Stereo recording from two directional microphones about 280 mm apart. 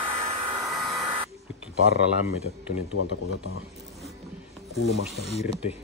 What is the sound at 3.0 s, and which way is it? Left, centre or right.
Speech, left.